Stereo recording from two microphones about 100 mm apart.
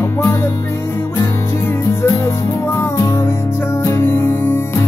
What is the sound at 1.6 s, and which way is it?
Music, 25° left (ahead or behind).